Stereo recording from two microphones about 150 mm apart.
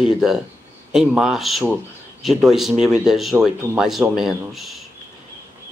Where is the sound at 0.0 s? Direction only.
Centre (ahead or behind).